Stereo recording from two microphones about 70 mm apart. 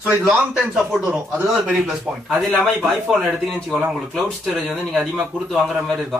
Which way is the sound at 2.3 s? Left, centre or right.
Centre.